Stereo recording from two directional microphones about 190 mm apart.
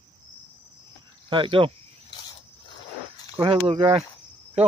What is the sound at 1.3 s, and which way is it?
Speech, 25° right (ahead or behind).